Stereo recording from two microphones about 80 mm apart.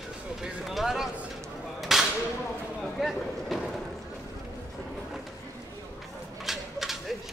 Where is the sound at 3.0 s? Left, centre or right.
Centre.